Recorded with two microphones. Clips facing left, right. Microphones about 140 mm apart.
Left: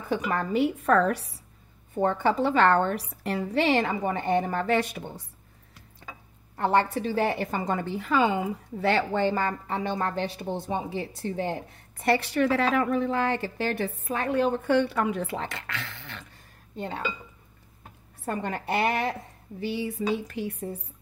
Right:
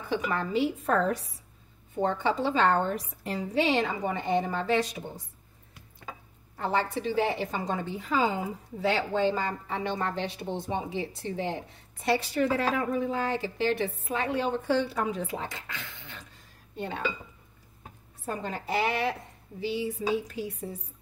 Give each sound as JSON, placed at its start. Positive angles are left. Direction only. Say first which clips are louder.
{"t": 0.1, "sound": "a woman's voice", "louder": "left 2 dB", "side_deg": 45}
{"t": 2.0, "sound": "a woman's voice", "louder": "left 3 dB", "side_deg": 50}
{"t": 6.6, "sound": "a woman's voice", "louder": "left 5 dB", "side_deg": 60}
{"t": 12.0, "sound": "a woman's voice", "louder": "left 3 dB", "side_deg": 60}
{"t": 18.2, "sound": "a woman's voice", "louder": "left 3 dB", "side_deg": 65}
{"t": 19.6, "sound": "a woman's voice", "louder": "left 1 dB", "side_deg": 60}